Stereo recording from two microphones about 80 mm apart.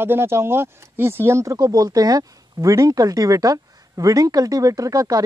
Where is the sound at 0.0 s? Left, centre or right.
Right.